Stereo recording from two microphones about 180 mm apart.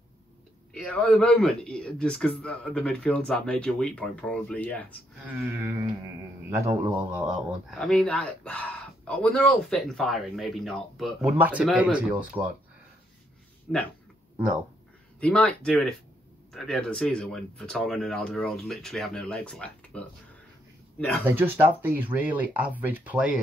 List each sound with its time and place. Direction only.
0.7 s a man's voice: 5° left (ahead or behind)
5.3 s speech: 10° right (ahead or behind)
6.8 s speech: 15° right (ahead or behind)
7.2 s speech: centre (ahead or behind)
13.7 s speech: 5° left (ahead or behind)
15.1 s a man's voice: 5° left (ahead or behind)
21.3 s speech: 10° right (ahead or behind)